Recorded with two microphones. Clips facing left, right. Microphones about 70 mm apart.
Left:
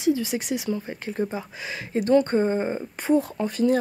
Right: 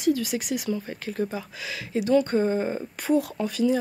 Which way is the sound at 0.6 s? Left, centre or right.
Centre.